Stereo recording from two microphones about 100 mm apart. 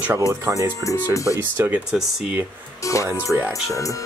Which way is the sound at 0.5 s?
30° right (ahead or behind).